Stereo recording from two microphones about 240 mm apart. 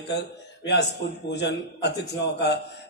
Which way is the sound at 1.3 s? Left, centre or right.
Left.